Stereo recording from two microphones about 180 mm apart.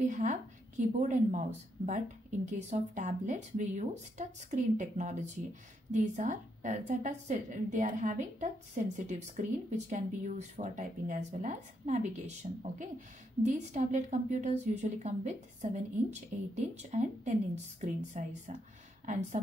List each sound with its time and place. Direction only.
0.0 s a woman's voice: 45° right (ahead or behind)
2.5 s speech: 40° right (ahead or behind)